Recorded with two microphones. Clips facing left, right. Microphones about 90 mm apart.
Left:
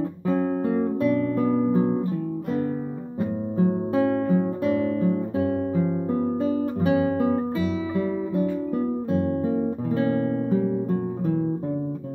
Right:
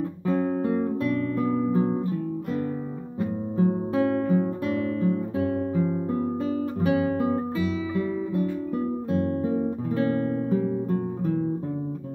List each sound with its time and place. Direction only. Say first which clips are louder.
0.3 s guitar: left 1 dB; 20° left (ahead or behind)
1.5 s guitar: left 2 dB; 30° left (ahead or behind)
3.9 s guitar: left 2 dB; 10° left (ahead or behind)
9.9 s music: left 1 dB; 20° left (ahead or behind)